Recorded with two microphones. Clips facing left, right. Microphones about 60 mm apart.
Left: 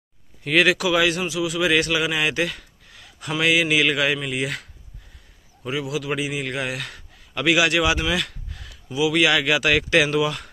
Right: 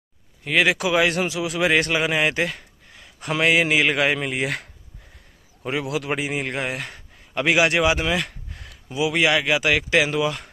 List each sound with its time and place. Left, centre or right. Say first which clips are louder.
0.4 s speech: left 1 dB; centre
0.7 s a man's voice: even; right
1.2 s a man's voice: even; right; by 10.5 s centre